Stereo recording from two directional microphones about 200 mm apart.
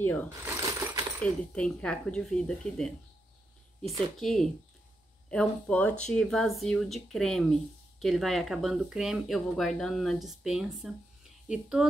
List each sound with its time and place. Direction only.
0.0 s speech: 10° left (ahead or behind)
0.6 s coin: 15° right (ahead or behind)
1.2 s speech: 5° left (ahead or behind)
4.2 s speech: 5° left (ahead or behind)